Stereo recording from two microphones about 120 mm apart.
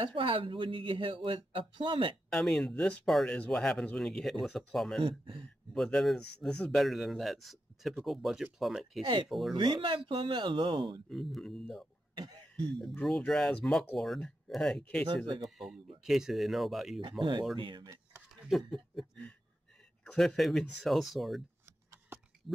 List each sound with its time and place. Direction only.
0.0 s speech: 45° right (ahead or behind)
2.2 s speech: 5° left (ahead or behind)
5.0 s speech: 45° right (ahead or behind)
5.7 s speech: 5° left (ahead or behind)
9.6 s speech: 40° right (ahead or behind)
11.1 s speech: centre (ahead or behind)
13.0 s speech: centre (ahead or behind)
17.2 s speech: 40° right (ahead or behind)
18.5 s speech: centre (ahead or behind)
20.1 s speech: centre (ahead or behind)